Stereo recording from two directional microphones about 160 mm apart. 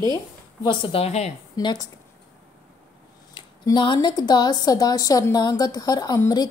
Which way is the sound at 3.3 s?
30° left (ahead or behind).